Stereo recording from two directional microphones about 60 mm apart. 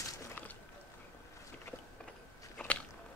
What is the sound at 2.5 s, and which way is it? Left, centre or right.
Biting, left.